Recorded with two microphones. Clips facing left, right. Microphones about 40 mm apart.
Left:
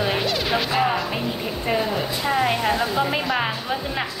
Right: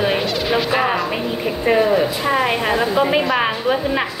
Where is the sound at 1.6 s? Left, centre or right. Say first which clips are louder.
Right 9 dB; right.